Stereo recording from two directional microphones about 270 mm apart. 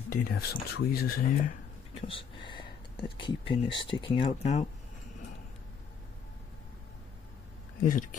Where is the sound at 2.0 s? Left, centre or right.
Centre.